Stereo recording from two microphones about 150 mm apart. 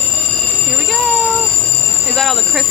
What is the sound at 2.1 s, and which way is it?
Speech, centre (ahead or behind).